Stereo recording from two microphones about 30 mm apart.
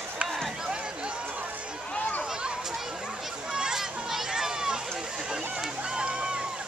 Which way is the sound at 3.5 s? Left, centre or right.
Right.